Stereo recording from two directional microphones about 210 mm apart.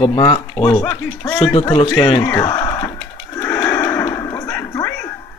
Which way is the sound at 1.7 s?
25° left (ahead or behind).